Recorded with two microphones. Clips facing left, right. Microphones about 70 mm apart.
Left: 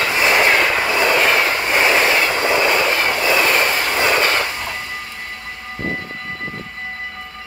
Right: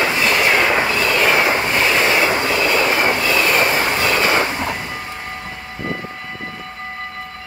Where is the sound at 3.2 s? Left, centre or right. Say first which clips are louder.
Left 1 dB; centre.